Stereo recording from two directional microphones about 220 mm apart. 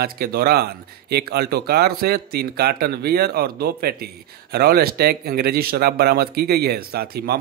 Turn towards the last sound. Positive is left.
turn(degrees=-45)  # may be behind; listen again after turning